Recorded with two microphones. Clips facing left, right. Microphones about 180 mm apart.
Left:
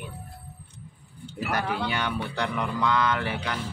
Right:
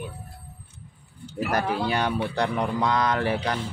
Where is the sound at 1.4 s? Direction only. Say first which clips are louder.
Right 3 dB; 40° right (ahead or behind).